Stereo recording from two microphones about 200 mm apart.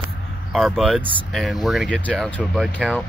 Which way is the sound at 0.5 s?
Centre (ahead or behind).